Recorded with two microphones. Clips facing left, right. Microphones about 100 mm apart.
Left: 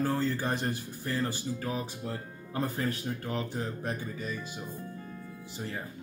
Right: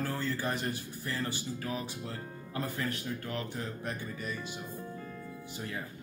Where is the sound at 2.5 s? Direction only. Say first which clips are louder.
Left 4 dB; 35° left (ahead or behind).